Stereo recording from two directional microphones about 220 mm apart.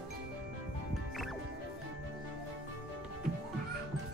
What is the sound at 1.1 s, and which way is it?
Music, centre (ahead or behind).